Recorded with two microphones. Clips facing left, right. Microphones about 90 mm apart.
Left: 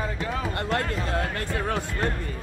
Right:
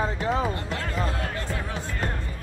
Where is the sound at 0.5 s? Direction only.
60° left (ahead or behind).